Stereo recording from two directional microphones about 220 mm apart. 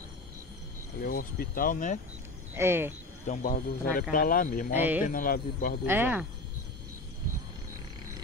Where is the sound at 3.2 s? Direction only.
35° left (ahead or behind).